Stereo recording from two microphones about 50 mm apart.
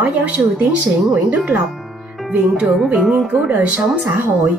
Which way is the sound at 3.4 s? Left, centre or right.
Right.